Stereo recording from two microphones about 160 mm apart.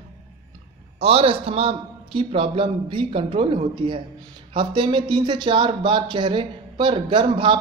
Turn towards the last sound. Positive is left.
turn(degrees=-30)  # may be behind; listen again after turning